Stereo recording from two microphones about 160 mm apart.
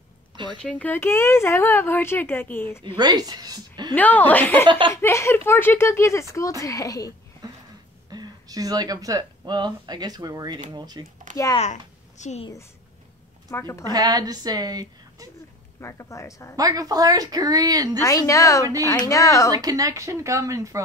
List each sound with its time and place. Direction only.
0.6 s speech: 5° left (ahead or behind)
3.0 s a woman's voice: 25° right (ahead or behind)
3.9 s speech: 10° left (ahead or behind)
4.6 s a woman's voice: 30° right (ahead or behind)
4.9 s speech: 15° left (ahead or behind)
7.4 s a sound: 20° right (ahead or behind)
8.1 s a woman's voice: 25° right (ahead or behind)
11.5 s speech: 45° left (ahead or behind)
13.5 s speech: 15° left (ahead or behind)
13.9 s a woman's voice: 25° right (ahead or behind)
15.8 s speech: 20° left (ahead or behind)
16.5 s a woman's voice: 25° right (ahead or behind)
18.0 s speech: 20° left (ahead or behind)
19.5 s a woman's voice: 20° right (ahead or behind)